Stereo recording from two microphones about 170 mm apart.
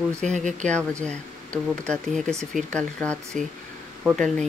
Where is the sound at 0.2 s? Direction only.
45° right (ahead or behind).